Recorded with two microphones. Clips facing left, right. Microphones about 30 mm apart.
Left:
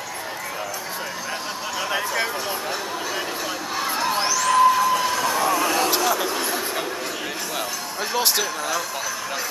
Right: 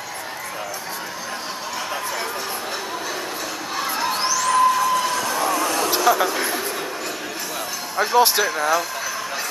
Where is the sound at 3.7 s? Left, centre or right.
Centre.